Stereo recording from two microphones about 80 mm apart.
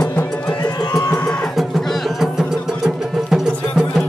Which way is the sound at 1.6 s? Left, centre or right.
Centre.